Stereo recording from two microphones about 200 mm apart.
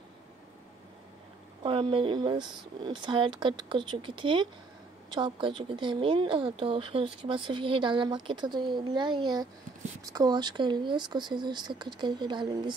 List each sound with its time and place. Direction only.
1.6 s speech: 25° right (ahead or behind)